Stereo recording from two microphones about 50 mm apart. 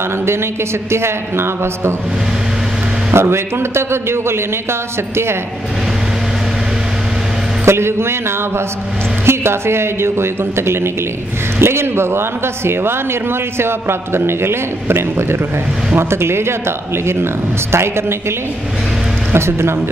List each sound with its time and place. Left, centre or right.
0.9 s a man's voice: right
3.1 s a man's voice: right
7.6 s a man's voice: right
19.3 s a man's voice: right